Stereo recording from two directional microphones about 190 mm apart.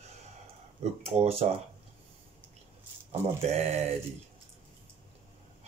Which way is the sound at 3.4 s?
35° right (ahead or behind).